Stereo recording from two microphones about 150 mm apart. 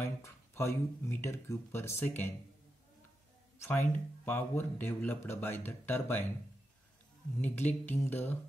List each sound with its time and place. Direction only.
0.0 s speech: 15° left (ahead or behind)
3.5 s speech: 20° left (ahead or behind)
7.4 s speech: 10° left (ahead or behind)